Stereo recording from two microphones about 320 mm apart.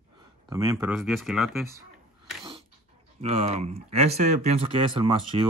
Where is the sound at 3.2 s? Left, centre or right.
Centre.